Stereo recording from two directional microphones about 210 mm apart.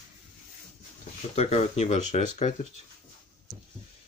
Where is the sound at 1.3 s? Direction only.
30° left (ahead or behind).